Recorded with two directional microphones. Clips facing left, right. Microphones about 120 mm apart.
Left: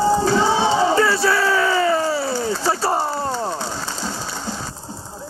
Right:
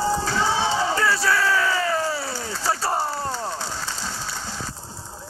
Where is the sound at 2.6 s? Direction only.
25° left (ahead or behind).